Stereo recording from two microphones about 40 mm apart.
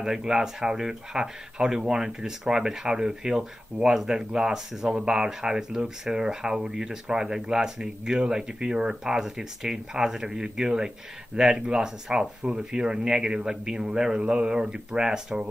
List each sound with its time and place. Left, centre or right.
0.0 s speech: centre